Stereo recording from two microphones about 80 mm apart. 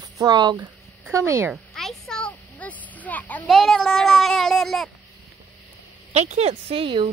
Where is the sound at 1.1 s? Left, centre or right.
Right.